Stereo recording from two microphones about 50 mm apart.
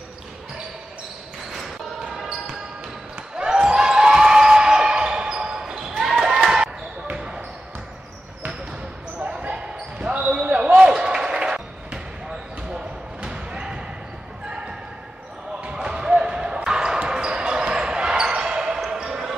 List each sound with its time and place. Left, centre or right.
3.3 s basketball bounce: centre
9.4 s basketball bounce: right
15.7 s basketball bounce: centre